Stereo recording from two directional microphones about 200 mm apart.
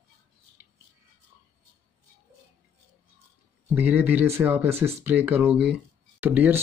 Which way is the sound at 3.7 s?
10° right (ahead or behind).